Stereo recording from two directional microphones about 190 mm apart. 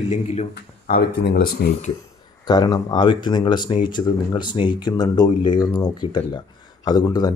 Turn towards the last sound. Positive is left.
turn(degrees=20)  # may be behind; listen again after turning